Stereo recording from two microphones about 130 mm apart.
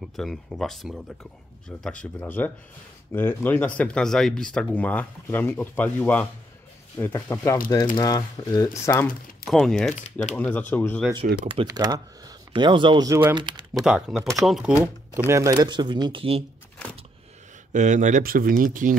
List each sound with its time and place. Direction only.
0.1 s speech: centre (ahead or behind); by 9.0 s 25° left (ahead or behind)
9.5 s speech: 5° left (ahead or behind)
11.1 s speech: 45° right (ahead or behind)
11.6 s speech: 30° right (ahead or behind)
13.8 s speech: 5° right (ahead or behind)
15.1 s speech: 20° right (ahead or behind); by 16.4 s 45° right (ahead or behind)
17.7 s speech: 70° right (ahead or behind); by 18.9 s 90° right